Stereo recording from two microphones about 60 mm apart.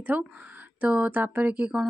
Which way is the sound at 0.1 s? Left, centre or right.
Right.